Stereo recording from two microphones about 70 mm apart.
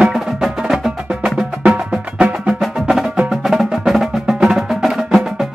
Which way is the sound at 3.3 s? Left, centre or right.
Centre.